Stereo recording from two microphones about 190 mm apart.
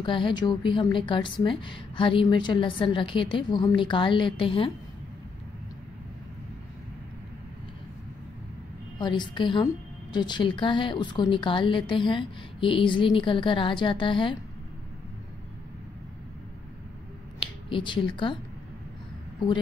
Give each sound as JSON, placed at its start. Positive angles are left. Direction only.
{"t": 0.0, "sound": "a woman's voice", "side_deg": 25}
{"t": 9.0, "sound": "a woman's voice", "side_deg": 25}
{"t": 17.6, "sound": "a woman's voice", "side_deg": 25}